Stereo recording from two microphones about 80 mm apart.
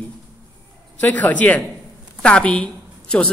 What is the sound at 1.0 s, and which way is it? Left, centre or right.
A woman's voice, centre.